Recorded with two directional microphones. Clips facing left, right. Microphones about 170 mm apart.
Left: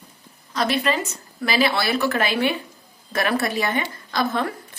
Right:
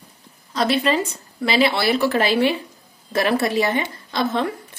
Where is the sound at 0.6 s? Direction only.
30° right (ahead or behind).